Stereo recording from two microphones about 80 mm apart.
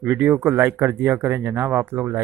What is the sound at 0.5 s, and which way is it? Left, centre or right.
Speech, right.